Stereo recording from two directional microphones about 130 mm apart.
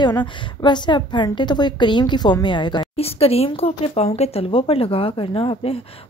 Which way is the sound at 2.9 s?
50° left (ahead or behind).